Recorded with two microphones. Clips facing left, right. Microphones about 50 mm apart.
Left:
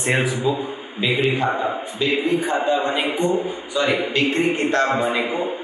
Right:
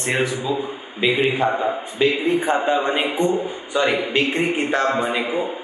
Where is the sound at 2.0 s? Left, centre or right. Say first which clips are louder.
Right 2 dB; right.